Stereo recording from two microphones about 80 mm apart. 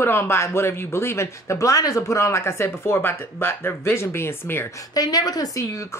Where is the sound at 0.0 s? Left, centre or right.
Left.